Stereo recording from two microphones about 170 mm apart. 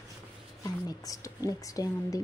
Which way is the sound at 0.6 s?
20° left (ahead or behind).